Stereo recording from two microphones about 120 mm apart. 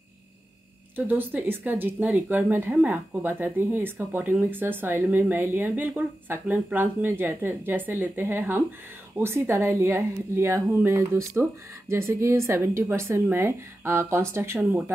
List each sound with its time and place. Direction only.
0.9 s speech: 15° right (ahead or behind)